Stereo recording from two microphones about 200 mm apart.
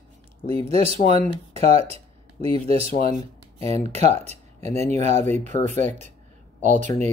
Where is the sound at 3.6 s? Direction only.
35° right (ahead or behind).